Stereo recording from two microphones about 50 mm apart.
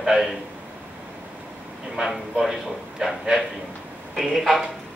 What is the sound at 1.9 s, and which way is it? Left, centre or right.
A man's voice, centre.